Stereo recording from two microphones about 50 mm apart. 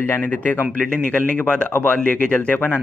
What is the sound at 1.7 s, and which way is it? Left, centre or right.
Speech, left.